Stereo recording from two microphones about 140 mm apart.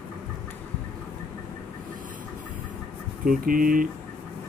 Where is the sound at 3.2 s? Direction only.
90° right.